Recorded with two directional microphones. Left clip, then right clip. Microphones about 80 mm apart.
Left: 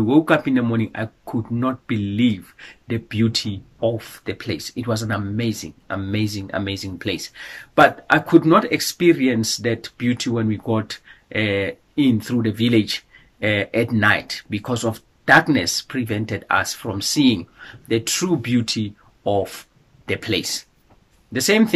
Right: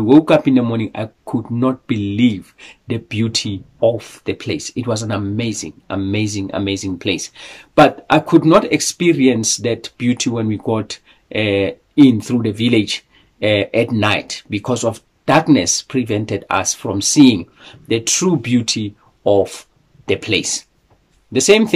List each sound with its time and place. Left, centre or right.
0.0 s speech: right